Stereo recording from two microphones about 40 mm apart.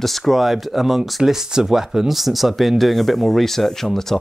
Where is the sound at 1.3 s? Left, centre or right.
Centre.